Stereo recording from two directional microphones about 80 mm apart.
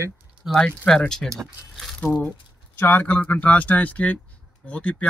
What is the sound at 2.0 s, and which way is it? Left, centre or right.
Speech, left.